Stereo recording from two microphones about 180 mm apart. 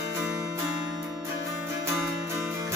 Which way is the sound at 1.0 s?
15° right (ahead or behind).